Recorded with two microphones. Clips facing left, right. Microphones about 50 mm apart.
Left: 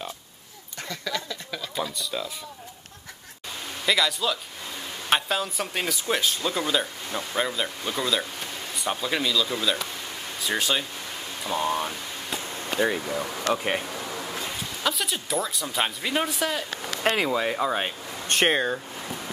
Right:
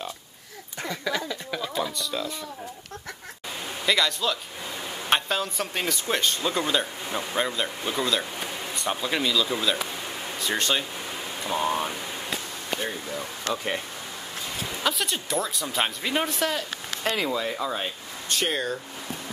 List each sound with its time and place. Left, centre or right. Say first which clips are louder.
0.8 s a sound: right 3 dB; centre
1.8 s speech: left 1 dB; centre
3.8 s speech: even; centre
13.2 s speech: left 1 dB; left
14.6 s speech: right 2 dB; centre
17.0 s speech: left 3 dB; left